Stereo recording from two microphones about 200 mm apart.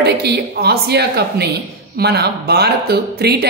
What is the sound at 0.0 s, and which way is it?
A woman's voice, 55° right (ahead or behind).